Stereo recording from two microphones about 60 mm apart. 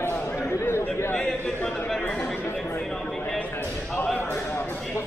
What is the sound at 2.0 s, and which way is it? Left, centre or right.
Chatter, centre.